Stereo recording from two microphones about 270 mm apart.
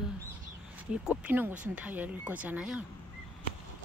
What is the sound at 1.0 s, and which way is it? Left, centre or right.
Speech, centre.